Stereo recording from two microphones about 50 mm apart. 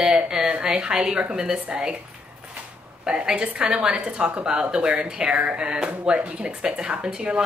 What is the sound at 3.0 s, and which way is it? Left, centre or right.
A woman's voice, centre.